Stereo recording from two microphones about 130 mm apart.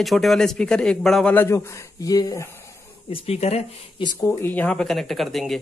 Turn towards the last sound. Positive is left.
turn(degrees=0)  # may be behind; listen again after turning